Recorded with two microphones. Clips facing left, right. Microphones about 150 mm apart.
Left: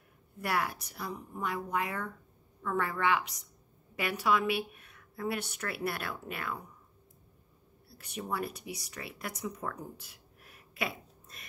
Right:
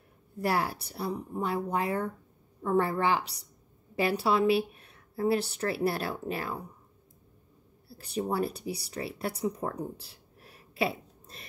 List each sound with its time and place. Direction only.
0.4 s a woman's voice: 30° right (ahead or behind)
8.0 s speech: 30° right (ahead or behind)